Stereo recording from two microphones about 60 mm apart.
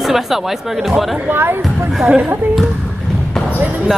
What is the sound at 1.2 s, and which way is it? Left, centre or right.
Speech, right.